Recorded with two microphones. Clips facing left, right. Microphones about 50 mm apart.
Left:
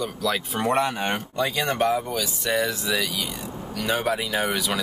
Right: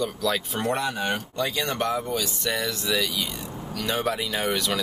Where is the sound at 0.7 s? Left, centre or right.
Left.